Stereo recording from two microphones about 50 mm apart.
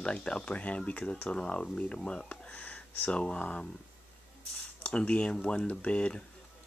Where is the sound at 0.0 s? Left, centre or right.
Left.